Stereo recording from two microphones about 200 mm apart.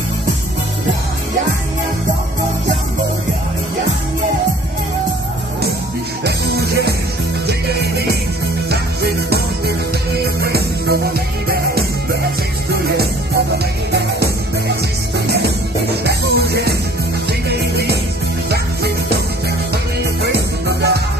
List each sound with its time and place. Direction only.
6.2 s music: 55° right (ahead or behind)
19.7 s music: 55° right (ahead or behind)